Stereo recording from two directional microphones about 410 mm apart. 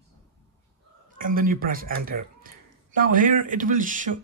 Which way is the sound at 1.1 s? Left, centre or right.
Centre.